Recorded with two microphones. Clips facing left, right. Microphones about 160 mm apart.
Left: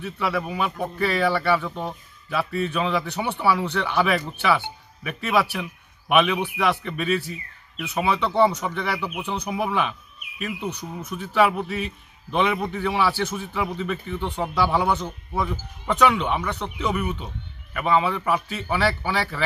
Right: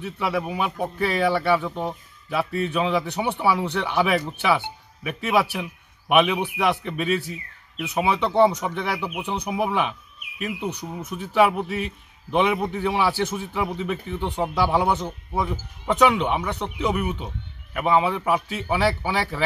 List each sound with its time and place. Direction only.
0.0 s speech: 20° right (ahead or behind)